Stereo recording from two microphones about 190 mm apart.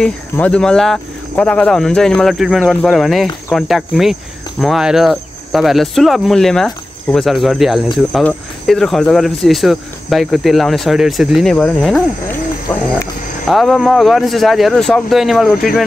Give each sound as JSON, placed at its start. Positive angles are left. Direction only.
{"t": 0.0, "sound": "cricket", "side_deg": 5}
{"t": 13.5, "sound": "cricket", "side_deg": 0}